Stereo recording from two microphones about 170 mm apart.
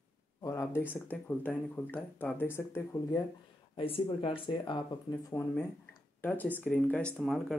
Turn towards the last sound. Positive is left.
turn(degrees=0)  # may be behind; listen again after turning